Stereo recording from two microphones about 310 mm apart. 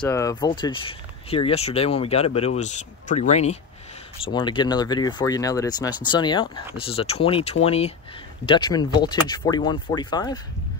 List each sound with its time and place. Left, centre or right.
0.0 s speech: centre